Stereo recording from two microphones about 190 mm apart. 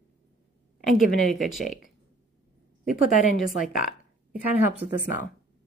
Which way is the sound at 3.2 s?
40° left (ahead or behind).